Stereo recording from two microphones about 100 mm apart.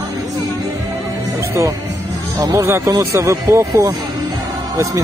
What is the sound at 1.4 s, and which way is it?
Speech, 30° right (ahead or behind).